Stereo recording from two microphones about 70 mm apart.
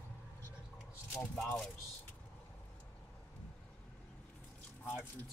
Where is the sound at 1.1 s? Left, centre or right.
Centre.